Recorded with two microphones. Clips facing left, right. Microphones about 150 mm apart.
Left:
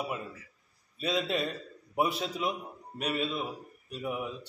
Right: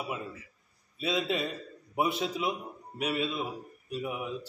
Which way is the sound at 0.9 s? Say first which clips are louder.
Even; centre (ahead or behind).